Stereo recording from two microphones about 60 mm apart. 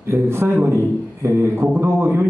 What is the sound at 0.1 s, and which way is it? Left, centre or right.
Speech, right.